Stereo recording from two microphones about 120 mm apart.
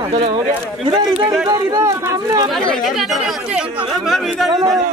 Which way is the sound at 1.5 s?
30° right (ahead or behind).